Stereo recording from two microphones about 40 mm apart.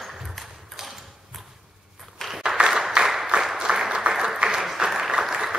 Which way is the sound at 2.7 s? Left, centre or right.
Centre.